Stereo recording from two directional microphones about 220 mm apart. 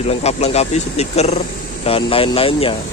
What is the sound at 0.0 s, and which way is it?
Speech, 30° left (ahead or behind).